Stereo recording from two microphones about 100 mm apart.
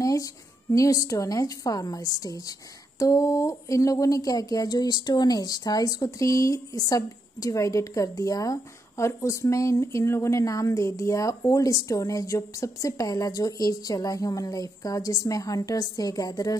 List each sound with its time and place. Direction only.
0.0 s speech: 35° left (ahead or behind)